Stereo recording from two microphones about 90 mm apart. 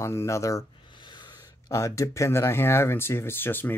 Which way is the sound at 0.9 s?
60° left (ahead or behind).